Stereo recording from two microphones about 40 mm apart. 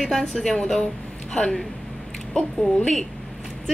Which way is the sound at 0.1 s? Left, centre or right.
Centre.